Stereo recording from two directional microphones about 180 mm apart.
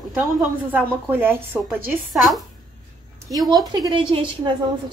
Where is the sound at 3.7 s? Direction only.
25° right (ahead or behind).